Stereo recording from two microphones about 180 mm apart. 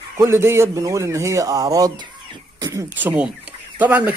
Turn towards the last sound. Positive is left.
turn(degrees=-10)  # may be behind; listen again after turning